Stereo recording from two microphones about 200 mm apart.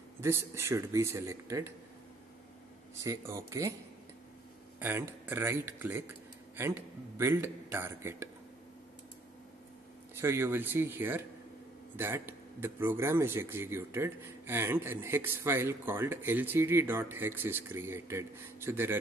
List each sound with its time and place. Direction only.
0.2 s speech: 15° right (ahead or behind)
3.0 s speech: 15° right (ahead or behind)
4.7 s speech: 10° right (ahead or behind)
10.1 s speech: 15° right (ahead or behind)